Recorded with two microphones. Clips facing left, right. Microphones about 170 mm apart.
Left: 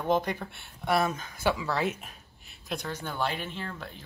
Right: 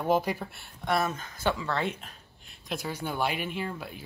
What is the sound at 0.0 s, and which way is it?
Speech, 5° right (ahead or behind).